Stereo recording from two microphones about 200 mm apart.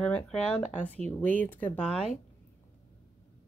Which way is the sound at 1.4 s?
10° left (ahead or behind).